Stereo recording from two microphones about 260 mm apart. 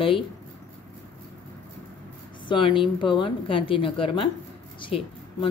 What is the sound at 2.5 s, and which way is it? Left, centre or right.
A woman's voice, centre.